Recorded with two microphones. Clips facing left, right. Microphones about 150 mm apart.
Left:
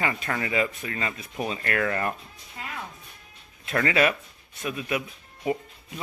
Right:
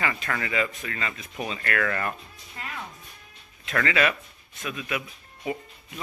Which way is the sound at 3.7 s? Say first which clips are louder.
Left 2 dB; 30° left (ahead or behind).